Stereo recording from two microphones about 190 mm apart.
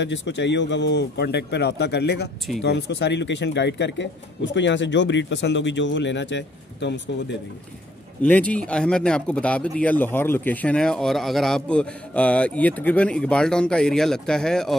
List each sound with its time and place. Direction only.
0.0 s speech: 70° left (ahead or behind)
8.2 s speech: 10° left (ahead or behind)